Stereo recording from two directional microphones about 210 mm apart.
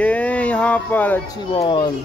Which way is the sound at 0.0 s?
5° left (ahead or behind).